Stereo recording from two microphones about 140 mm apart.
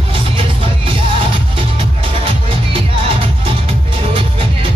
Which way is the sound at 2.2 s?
40° right (ahead or behind).